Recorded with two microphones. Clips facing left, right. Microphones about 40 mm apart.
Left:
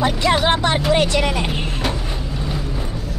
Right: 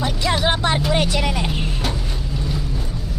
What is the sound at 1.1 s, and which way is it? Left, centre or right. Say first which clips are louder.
Vehicle: left 3 dB; left.